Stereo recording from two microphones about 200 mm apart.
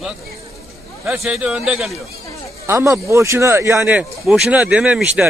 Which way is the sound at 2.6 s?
15° right (ahead or behind).